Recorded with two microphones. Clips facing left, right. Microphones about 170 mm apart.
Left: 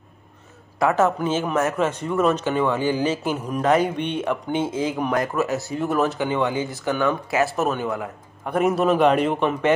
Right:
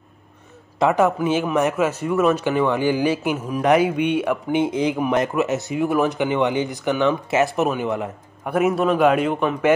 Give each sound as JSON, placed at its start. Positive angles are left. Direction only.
{"t": 0.7, "sound": "speech", "side_deg": -20}
{"t": 8.5, "sound": "a man's voice", "side_deg": -5}